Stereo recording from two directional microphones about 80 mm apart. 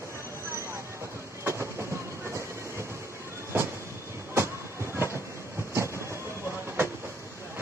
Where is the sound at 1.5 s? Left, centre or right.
Right.